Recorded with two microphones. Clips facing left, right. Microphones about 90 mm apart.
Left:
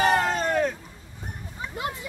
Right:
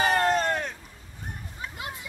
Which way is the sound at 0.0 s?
Centre (ahead or behind).